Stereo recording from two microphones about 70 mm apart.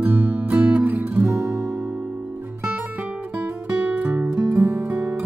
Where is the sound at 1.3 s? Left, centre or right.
Right.